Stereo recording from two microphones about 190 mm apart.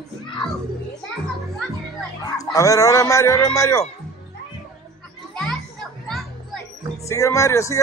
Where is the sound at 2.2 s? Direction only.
15° left (ahead or behind).